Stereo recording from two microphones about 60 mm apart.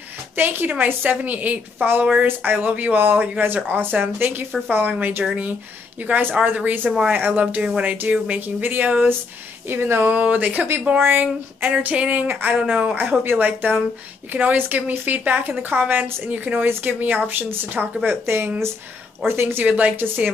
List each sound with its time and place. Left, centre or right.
0.4 s a woman's voice: right
9.7 s a woman's voice: right
10.0 s speech: right
12.6 s speech: right
13.2 s a woman's voice: right
19.6 s speech: right